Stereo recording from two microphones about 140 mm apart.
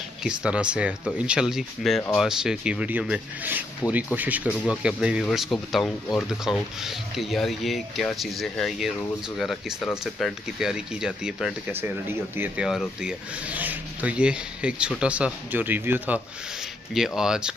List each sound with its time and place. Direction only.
0.2 s speech: 5° right (ahead or behind)
11.7 s speech: 15° right (ahead or behind)
12.6 s speech: 5° right (ahead or behind)
16.9 s speech: 5° right (ahead or behind)